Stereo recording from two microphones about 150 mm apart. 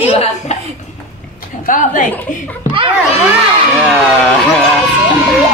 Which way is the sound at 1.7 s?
60° left (ahead or behind).